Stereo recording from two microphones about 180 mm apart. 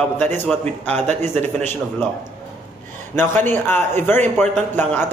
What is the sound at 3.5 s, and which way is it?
A man's voice, 10° left (ahead or behind).